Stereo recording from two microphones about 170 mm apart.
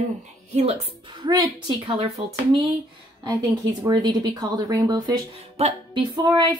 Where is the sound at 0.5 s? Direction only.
35° right (ahead or behind).